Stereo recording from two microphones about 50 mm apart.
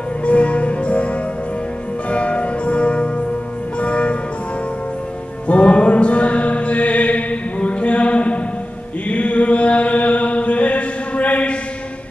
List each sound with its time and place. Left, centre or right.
0.2 s music: left
5.5 s mantra: left
9.1 s chant: left